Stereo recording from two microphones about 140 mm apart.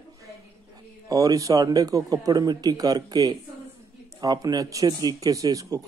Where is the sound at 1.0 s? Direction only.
25° right (ahead or behind).